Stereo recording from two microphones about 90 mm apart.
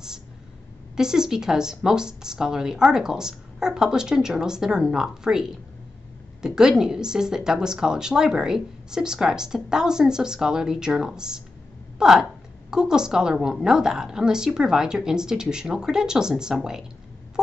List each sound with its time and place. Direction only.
0.9 s a woman's voice: 5° right (ahead or behind)